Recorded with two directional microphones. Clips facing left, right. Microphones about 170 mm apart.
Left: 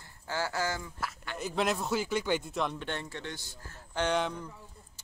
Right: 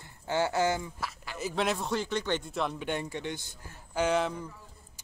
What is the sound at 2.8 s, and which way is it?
Speech, 15° right (ahead or behind).